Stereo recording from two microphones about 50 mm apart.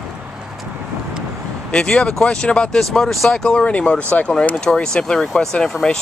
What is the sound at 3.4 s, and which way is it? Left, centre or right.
Speech, centre.